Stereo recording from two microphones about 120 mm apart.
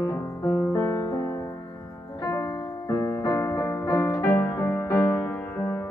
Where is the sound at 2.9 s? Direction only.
25° left (ahead or behind).